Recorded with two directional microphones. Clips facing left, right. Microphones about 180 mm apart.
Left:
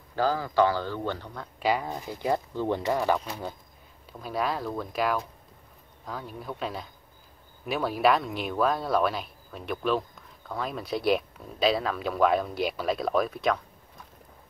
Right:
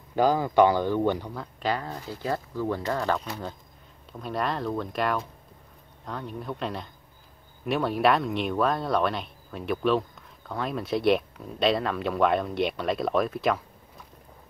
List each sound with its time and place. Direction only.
0.1 s speech: 20° right (ahead or behind)
1.6 s speech: 10° left (ahead or behind)